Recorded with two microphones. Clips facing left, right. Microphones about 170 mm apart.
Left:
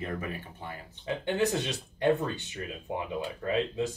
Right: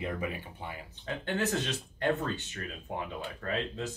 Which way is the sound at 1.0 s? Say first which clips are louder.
Left 4 dB; 15° left (ahead or behind).